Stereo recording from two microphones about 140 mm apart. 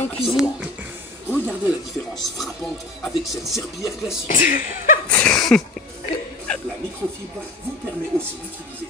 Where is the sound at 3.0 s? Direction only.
Centre (ahead or behind).